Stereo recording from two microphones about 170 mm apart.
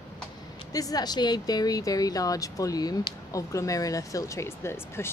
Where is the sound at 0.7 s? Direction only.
20° left (ahead or behind).